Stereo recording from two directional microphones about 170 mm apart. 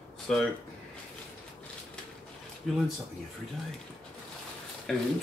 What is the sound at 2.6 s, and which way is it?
Speech, centre (ahead or behind).